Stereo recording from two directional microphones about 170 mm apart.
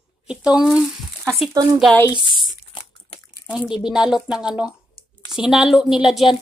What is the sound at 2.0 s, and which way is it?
Speech, 20° left (ahead or behind).